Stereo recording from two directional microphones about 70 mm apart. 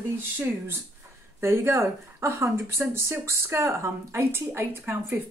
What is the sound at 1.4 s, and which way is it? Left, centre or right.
Speech, right.